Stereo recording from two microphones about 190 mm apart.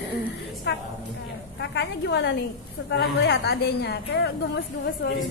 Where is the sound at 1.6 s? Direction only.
65° left (ahead or behind).